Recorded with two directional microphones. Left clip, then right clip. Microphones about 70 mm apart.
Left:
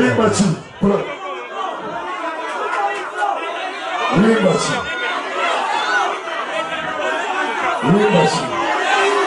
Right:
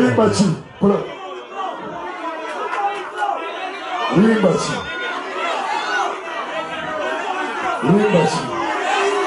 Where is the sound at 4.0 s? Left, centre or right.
Centre.